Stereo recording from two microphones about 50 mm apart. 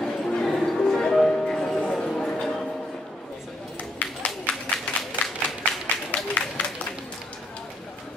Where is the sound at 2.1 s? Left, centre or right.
Centre.